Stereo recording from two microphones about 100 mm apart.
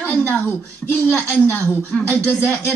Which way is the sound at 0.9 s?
20° left (ahead or behind).